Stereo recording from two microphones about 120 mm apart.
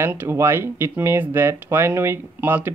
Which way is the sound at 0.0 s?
15° right (ahead or behind).